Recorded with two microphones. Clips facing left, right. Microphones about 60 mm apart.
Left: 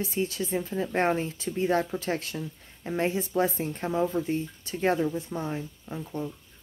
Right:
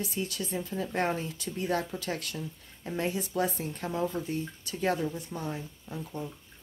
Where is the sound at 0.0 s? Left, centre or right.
Left.